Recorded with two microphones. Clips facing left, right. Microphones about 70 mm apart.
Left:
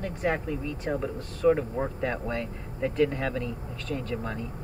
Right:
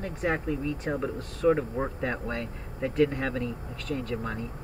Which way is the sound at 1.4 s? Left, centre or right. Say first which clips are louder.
Left 1 dB; centre.